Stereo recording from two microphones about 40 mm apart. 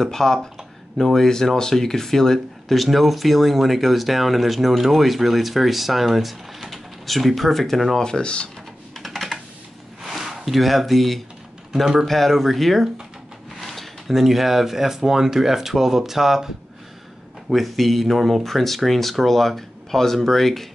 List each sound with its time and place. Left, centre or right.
0.0 s speech: centre
8.0 s speech: left
8.9 s computer keyboard: centre
10.0 s speech: centre